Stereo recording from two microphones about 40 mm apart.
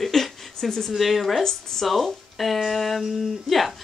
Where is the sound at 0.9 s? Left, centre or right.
Centre.